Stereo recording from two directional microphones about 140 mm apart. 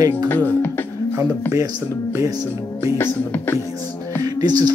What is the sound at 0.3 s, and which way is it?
Speech, 15° left (ahead or behind).